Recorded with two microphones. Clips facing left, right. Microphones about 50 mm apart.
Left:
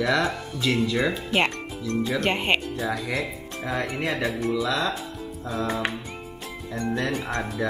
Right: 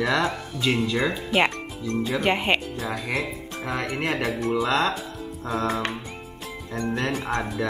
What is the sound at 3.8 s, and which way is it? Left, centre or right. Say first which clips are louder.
Speech: right 1 dB; right.